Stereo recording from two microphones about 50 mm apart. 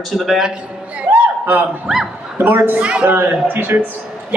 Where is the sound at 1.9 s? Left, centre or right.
Centre.